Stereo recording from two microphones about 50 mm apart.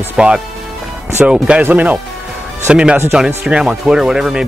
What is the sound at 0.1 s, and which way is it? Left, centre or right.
Speech, centre.